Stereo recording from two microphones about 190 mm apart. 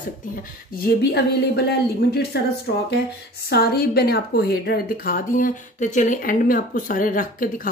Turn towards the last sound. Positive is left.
turn(degrees=45)  # may be behind; listen again after turning